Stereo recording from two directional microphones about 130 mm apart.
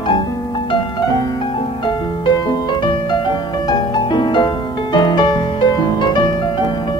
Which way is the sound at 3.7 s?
35° left (ahead or behind).